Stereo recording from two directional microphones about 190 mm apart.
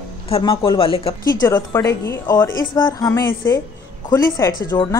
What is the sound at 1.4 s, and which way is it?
A woman's voice, 15° left (ahead or behind).